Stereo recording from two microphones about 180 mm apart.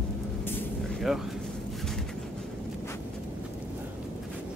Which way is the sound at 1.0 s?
Centre (ahead or behind).